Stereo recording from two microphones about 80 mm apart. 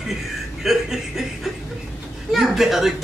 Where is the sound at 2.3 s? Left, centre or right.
Centre.